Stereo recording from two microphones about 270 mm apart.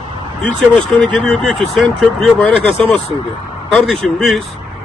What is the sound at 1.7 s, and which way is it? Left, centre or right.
A man's voice, centre.